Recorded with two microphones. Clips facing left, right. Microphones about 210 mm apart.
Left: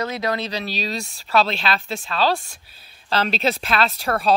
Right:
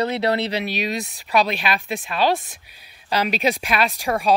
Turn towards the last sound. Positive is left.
turn(degrees=-15)  # may be behind; listen again after turning